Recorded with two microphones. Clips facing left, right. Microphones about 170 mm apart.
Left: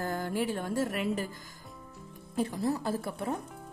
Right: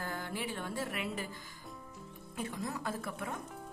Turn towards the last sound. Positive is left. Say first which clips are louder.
# left 7 dB
turn(degrees=35)  # may be behind; listen again after turning